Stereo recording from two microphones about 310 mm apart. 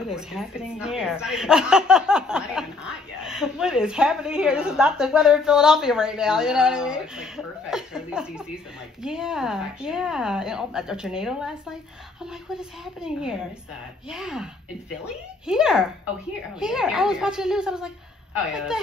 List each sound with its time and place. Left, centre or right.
0.0 s speech: centre
12.5 s speech: centre